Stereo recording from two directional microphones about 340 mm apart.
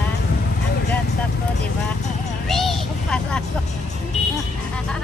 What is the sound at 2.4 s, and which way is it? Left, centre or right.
Speech, centre.